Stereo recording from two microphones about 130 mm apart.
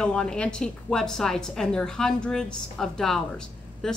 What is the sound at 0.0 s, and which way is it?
A woman's voice, 5° left (ahead or behind).